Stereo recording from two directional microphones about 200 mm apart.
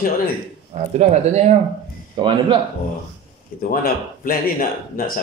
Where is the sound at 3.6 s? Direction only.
45° left (ahead or behind).